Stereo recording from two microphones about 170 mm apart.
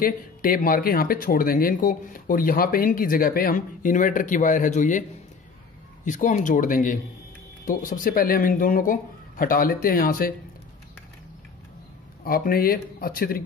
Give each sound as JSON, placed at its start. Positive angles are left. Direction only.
{"t": 0.0, "sound": "speech", "side_deg": 55}
{"t": 6.0, "sound": "speech", "side_deg": 45}
{"t": 12.3, "sound": "speech", "side_deg": 60}